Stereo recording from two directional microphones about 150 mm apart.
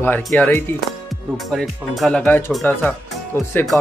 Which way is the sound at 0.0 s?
10° left (ahead or behind).